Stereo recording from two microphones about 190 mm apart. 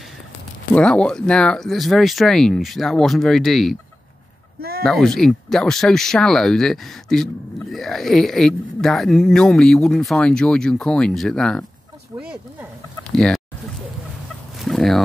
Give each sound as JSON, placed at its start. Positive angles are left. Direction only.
{"t": 0.7, "sound": "speech", "side_deg": 5}
{"t": 4.6, "sound": "a sound", "side_deg": -55}
{"t": 4.8, "sound": "speech", "side_deg": 0}
{"t": 13.1, "sound": "speech", "side_deg": 0}
{"t": 14.6, "sound": "fowl", "side_deg": 0}